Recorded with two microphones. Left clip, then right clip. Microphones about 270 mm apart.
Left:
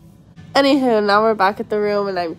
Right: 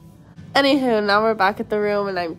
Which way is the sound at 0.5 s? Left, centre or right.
Centre.